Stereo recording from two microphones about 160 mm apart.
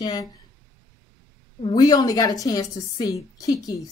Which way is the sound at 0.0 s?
25° left (ahead or behind).